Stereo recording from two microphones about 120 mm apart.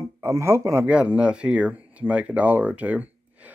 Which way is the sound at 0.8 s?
10° right (ahead or behind).